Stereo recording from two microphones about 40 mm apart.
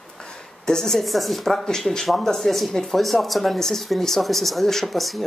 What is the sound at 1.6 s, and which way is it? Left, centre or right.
Speech, centre.